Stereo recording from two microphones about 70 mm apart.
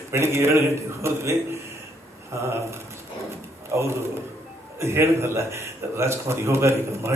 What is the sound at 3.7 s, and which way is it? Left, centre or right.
Speech, right.